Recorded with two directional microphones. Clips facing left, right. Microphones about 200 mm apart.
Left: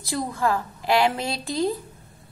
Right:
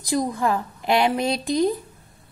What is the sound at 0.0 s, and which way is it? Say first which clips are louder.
A woman's voice: right 3 dB; 15° right (ahead or behind).